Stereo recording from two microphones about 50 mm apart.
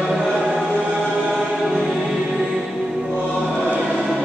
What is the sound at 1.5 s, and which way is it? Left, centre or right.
Music, centre.